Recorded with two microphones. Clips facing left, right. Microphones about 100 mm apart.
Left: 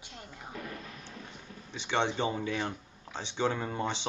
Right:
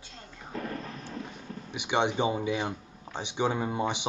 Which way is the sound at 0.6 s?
40° right (ahead or behind).